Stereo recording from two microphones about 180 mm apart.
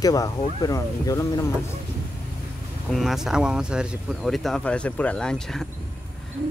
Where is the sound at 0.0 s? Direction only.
20° left (ahead or behind).